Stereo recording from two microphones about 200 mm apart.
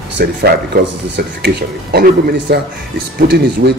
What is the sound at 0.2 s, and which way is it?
Speech, 50° right (ahead or behind).